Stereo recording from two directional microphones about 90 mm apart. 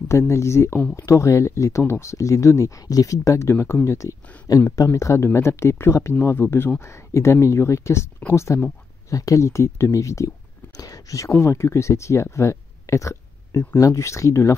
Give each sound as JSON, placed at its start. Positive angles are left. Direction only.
{"t": 0.2, "sound": "speech", "side_deg": 30}